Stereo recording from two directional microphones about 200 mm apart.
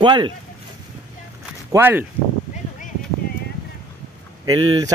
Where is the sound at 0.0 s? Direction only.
25° right (ahead or behind).